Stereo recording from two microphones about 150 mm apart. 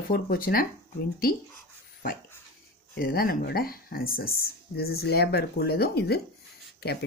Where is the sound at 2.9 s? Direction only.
90° left.